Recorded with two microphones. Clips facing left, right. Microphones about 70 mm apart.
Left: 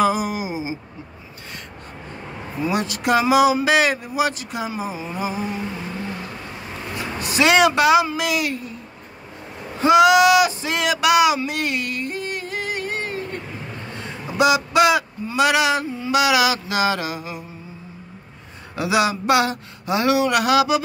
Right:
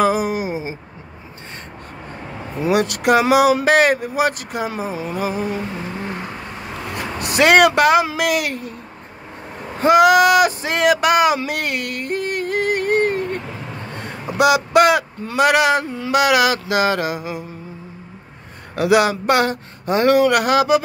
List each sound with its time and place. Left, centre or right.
0.0 s a sound: right
2.6 s speech: right
6.9 s speech: right
9.8 s speech: right
11.3 s yodeling: right
13.9 s a sound: right
15.3 s speech: right
15.9 s mantra: right
16.2 s speech: right
18.8 s speech: right